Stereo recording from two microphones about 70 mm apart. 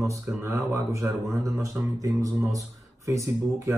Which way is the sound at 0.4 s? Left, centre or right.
Right.